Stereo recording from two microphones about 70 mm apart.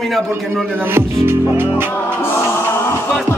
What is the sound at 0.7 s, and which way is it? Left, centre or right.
Music, right.